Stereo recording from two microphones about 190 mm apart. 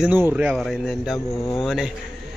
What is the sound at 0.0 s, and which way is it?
Speech, 10° right (ahead or behind).